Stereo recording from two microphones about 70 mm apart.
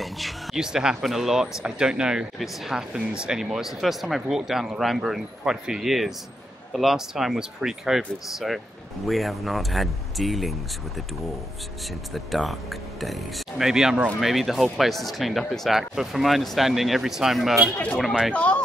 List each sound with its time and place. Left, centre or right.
0.0 s speech: centre
12.1 s speech: centre
18.3 s speech: centre